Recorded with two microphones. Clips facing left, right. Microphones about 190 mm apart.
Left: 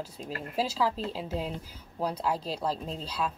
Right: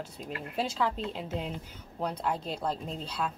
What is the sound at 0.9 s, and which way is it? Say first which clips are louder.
Speech: left 1 dB; 35° left (ahead or behind).